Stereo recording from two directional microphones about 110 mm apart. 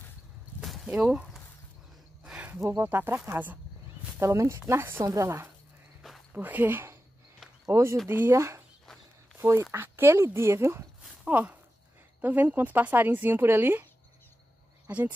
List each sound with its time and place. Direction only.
0.6 s a sound: 5° right (ahead or behind)
2.2 s speech: 15° right (ahead or behind)
4.2 s speech: 25° right (ahead or behind)
14.9 s speech: 15° right (ahead or behind)